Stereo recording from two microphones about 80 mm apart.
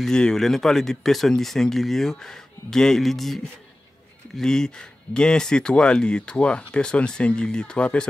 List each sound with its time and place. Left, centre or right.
0.0 s speech: centre